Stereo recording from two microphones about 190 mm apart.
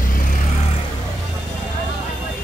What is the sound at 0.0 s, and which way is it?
Vehicle, 45° left (ahead or behind).